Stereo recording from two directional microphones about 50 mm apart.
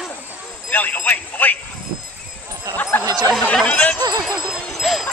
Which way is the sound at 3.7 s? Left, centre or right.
Left.